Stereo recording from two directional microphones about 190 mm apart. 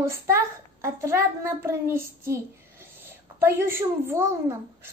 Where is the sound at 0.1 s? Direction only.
15° right (ahead or behind).